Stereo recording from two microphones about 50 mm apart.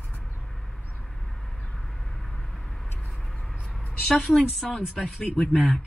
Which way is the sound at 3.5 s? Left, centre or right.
Centre.